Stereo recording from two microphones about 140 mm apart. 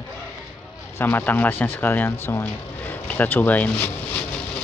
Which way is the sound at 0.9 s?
15° left (ahead or behind).